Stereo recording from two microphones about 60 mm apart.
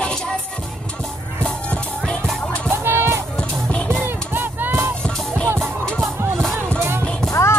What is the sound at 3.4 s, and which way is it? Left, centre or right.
Music, centre.